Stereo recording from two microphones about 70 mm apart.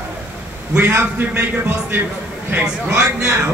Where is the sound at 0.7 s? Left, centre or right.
Right.